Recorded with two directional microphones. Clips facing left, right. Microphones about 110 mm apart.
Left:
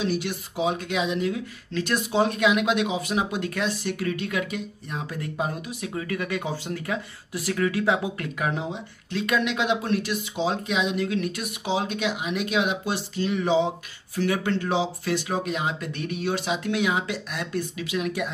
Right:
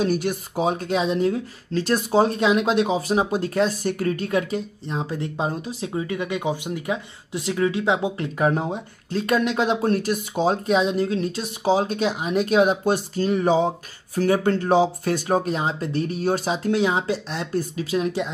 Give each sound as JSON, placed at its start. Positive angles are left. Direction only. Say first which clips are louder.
{"t": 0.0, "sound": "speech", "louder": "right 5 dB", "side_deg": -45}